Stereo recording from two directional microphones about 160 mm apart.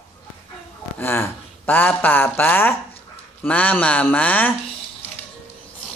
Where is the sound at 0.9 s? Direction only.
15° left (ahead or behind).